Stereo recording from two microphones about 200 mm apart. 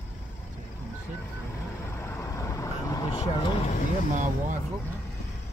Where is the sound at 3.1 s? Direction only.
30° left (ahead or behind).